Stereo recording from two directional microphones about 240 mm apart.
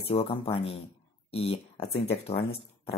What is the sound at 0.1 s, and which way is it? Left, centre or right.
Speech, left.